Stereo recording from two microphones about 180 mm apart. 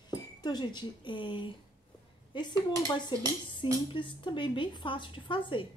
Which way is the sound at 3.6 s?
25° left (ahead or behind).